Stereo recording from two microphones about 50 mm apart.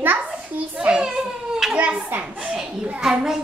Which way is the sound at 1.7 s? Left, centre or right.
Right.